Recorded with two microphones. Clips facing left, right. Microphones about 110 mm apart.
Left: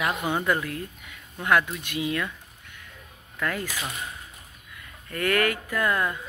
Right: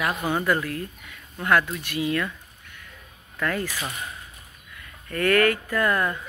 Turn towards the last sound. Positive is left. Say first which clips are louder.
# right 2 dB
turn(degrees=10)  # may be behind; listen again after turning